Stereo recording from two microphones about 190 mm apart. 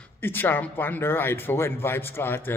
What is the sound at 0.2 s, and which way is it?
Speech, 10° left (ahead or behind).